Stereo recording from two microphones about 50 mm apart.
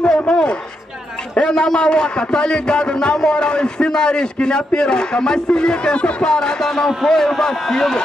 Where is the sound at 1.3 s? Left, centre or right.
Centre.